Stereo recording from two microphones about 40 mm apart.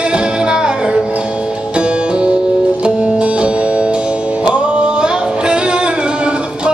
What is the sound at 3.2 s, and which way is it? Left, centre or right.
Music, right.